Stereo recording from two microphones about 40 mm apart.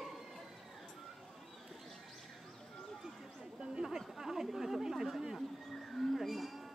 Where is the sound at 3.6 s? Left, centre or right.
Centre.